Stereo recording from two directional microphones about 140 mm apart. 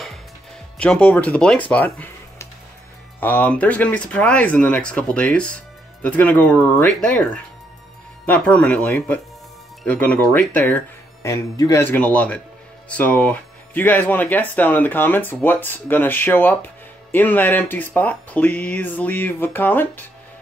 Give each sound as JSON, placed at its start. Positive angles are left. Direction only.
{"t": 0.7, "sound": "speech", "side_deg": 10}
{"t": 11.2, "sound": "speech", "side_deg": 25}
{"t": 11.8, "sound": "speech", "side_deg": 10}